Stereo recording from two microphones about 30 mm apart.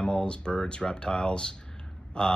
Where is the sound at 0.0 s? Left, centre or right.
Left.